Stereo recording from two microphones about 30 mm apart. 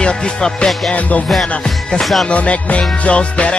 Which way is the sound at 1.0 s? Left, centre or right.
Left.